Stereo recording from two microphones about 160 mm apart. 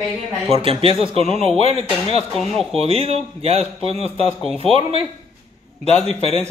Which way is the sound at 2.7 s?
40° right (ahead or behind).